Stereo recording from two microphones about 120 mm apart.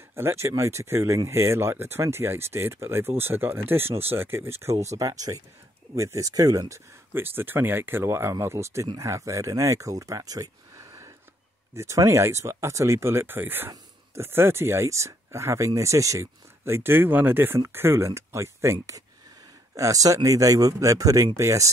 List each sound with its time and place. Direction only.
0.1 s speech: 20° right (ahead or behind)
7.2 s speech: 20° right (ahead or behind)